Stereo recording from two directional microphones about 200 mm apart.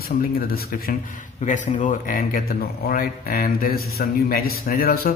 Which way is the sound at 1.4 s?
40° left (ahead or behind).